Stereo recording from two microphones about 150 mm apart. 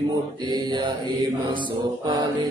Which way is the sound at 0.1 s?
30° right (ahead or behind).